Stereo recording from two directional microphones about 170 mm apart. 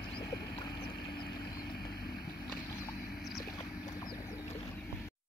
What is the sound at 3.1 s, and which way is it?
Boat, centre (ahead or behind).